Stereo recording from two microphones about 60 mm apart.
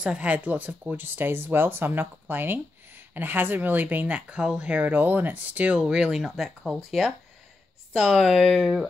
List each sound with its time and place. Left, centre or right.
0.0 s speech: centre
4.3 s speech: centre
5.8 s speech: centre